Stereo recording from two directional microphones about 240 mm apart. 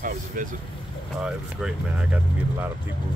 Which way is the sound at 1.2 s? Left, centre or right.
Centre.